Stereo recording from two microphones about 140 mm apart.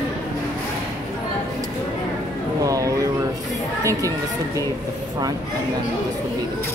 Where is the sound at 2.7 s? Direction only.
25° right (ahead or behind).